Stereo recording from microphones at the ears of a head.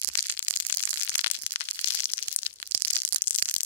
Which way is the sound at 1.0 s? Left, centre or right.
Left.